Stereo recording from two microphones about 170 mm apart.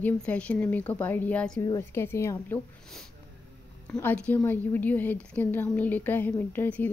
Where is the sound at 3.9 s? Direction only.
10° left (ahead or behind).